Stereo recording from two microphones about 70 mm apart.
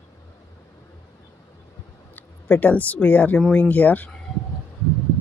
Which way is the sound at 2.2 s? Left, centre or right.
Left.